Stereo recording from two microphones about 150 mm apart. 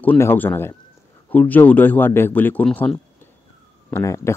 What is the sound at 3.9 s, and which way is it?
Speech, 20° left (ahead or behind).